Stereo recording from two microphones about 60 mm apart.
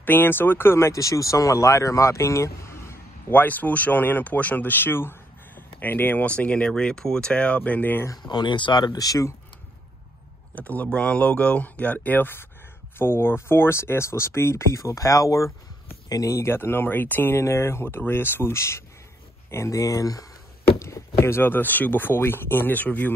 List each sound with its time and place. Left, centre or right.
0.0 s speech: left
1.0 s speech: left
3.3 s speech: left
6.2 s speech: left
8.9 s speech: left
10.5 s speech: left
14.8 s speech: left
16.5 s speech: left
17.4 s speech: left
19.5 s speech: left
21.2 s speech: left